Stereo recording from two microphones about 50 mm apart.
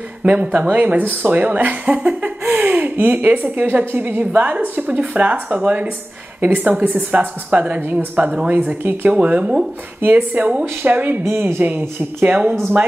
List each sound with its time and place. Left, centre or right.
0.2 s a woman's voice: right
11.2 s a woman's voice: right